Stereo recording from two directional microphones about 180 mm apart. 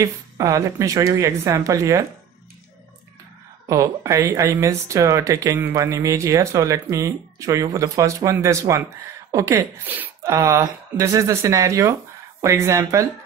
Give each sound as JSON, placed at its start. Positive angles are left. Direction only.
{"t": 0.0, "sound": "speech", "side_deg": -20}
{"t": 3.6, "sound": "speech", "side_deg": -20}